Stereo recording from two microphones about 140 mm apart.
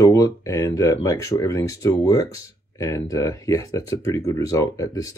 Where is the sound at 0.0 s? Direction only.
25° left (ahead or behind).